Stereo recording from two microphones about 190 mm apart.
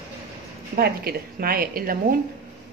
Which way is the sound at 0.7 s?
55° right (ahead or behind).